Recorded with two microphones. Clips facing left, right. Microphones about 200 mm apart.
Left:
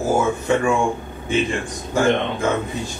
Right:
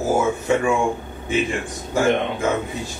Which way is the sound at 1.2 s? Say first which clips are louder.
Left 1 dB; 5° right (ahead or behind).